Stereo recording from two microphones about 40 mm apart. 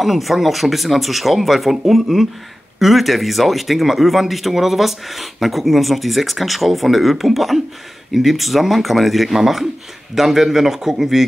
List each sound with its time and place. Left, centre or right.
0.0 s a man's voice: centre